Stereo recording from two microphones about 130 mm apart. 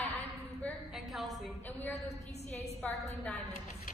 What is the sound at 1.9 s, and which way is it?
Speech, 60° left (ahead or behind).